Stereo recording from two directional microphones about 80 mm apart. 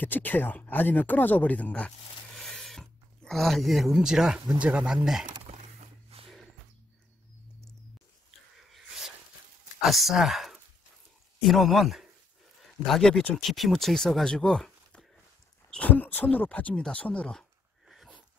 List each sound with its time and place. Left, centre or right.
0.0 s speech: left; by 5.3 s centre
9.8 s speech: centre
15.7 s speech: centre
17.8 s a sound: centre